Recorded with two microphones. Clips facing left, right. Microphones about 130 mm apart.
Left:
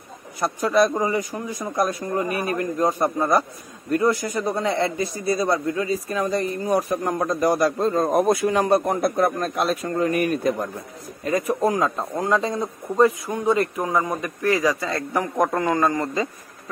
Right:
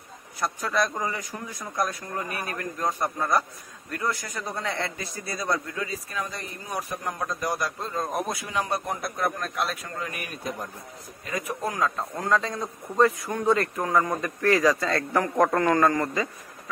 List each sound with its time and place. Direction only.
0.4 s a man's voice: 15° left (ahead or behind)